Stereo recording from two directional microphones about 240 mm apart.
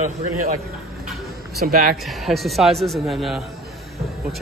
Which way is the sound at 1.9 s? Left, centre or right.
Centre.